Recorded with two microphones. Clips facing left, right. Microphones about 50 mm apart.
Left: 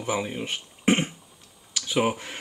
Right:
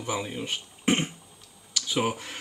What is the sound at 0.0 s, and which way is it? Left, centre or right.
Speech, centre.